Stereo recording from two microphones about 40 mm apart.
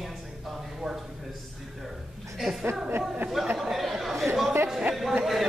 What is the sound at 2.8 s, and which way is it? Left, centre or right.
Speech, right.